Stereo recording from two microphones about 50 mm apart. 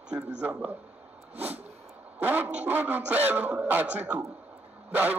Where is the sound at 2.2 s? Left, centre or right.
Right.